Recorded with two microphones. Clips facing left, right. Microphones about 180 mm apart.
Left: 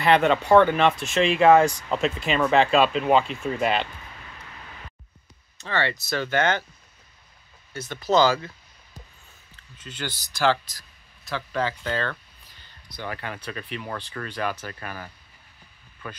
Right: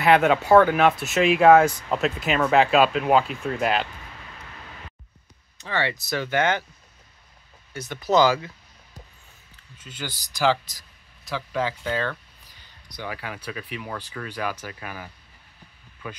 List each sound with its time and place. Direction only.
0.0 s speech: 5° right (ahead or behind)
5.6 s speech: 10° right (ahead or behind)
7.9 s speech: 15° right (ahead or behind)
9.8 s speech: 10° right (ahead or behind)